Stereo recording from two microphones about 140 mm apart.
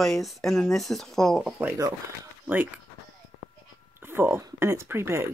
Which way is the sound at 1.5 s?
10° right (ahead or behind).